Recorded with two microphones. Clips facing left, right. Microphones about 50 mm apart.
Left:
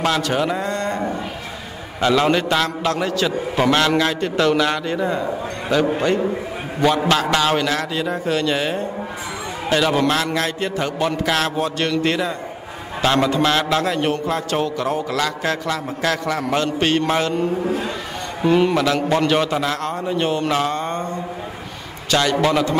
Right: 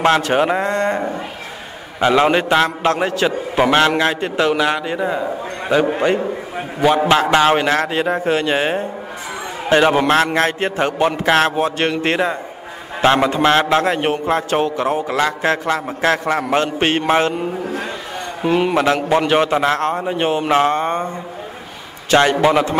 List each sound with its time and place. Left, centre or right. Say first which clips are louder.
0.0 s a man's voice: right 5 dB; right
3.6 s a man's voice: right 3 dB; centre
5.8 s a man's voice: right 2 dB; right
7.2 s a man's voice: right 4 dB; right
18.4 s a man's voice: even; centre
22.1 s a man's voice: right 4 dB; right